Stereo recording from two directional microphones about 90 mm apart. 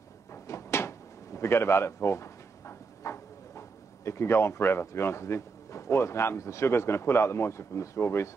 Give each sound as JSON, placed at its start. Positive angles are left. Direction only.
{"t": 0.3, "sound": "door", "side_deg": 30}